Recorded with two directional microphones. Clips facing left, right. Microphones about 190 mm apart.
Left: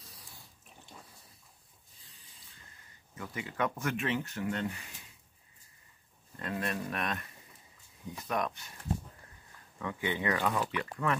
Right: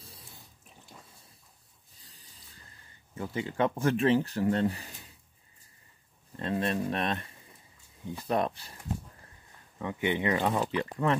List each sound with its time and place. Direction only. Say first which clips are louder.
0.0 s water: right 3 dB; 25° right (ahead or behind)
2.0 s a sound: right 4 dB; 35° right (ahead or behind)
3.2 s speech: right 5 dB; 30° right (ahead or behind)
6.3 s speech: right 6 dB; 30° right (ahead or behind)
9.8 s speech: right 5 dB; 20° right (ahead or behind)